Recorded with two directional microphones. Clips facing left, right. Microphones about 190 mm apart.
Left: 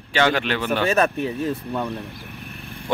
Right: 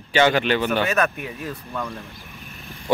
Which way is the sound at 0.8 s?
30° left (ahead or behind).